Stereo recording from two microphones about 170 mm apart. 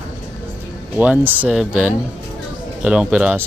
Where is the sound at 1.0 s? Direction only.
10° right (ahead or behind).